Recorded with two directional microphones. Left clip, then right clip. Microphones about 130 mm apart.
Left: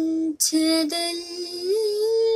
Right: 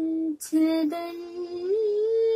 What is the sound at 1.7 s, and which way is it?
Music, 5° left (ahead or behind).